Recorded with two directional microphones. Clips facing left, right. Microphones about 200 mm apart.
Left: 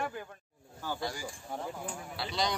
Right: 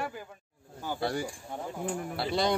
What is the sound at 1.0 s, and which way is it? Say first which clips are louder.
Speech: right 6 dB; 60° right (ahead or behind).